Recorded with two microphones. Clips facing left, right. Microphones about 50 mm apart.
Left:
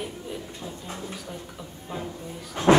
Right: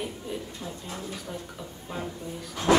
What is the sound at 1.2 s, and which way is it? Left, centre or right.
Speech, centre.